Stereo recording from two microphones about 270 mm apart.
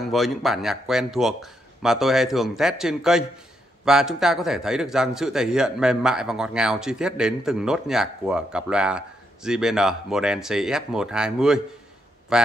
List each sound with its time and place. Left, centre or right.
0.0 s a man's voice: centre